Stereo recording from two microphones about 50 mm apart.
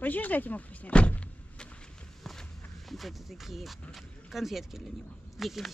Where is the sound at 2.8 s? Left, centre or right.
Centre.